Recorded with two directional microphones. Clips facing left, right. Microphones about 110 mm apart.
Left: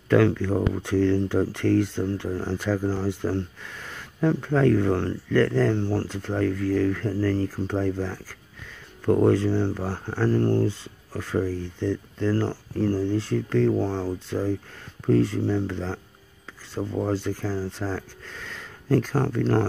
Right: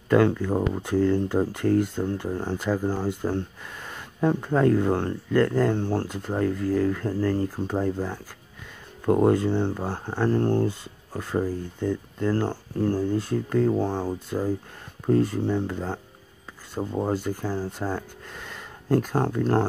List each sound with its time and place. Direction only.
0.1 s speech: 15° right (ahead or behind)